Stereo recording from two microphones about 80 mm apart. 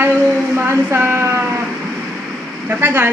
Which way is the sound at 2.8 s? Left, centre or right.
Right.